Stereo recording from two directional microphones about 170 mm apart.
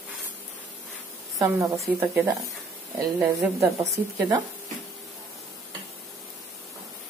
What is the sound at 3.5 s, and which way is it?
Speech, 20° right (ahead or behind).